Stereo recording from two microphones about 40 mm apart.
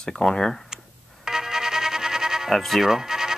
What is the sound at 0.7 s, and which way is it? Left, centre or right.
Music, centre.